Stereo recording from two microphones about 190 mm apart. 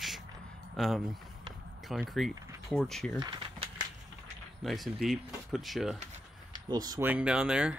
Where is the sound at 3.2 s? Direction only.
25° right (ahead or behind).